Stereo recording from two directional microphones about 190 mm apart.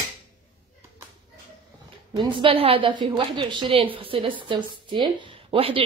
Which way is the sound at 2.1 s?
25° right (ahead or behind).